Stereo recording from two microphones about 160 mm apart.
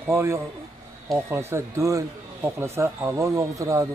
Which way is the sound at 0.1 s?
15° right (ahead or behind).